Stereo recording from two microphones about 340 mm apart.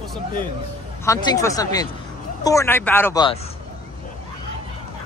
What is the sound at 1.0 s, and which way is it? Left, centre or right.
A man's voice, centre.